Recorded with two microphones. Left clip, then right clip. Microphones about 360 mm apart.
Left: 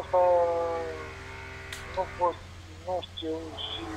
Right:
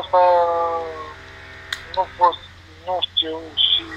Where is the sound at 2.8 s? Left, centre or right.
Right.